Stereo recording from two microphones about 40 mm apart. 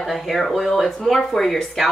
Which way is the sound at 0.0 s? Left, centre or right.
Centre.